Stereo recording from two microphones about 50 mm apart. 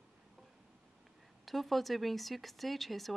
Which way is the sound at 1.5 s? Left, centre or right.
Centre.